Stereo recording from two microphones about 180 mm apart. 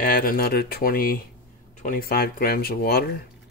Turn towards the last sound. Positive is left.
turn(degrees=60)  # may be behind; listen again after turning